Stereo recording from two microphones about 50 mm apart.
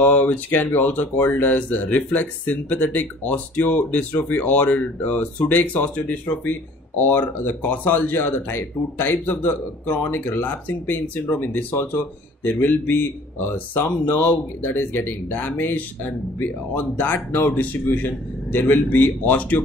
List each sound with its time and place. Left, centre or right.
0.0 s speech: left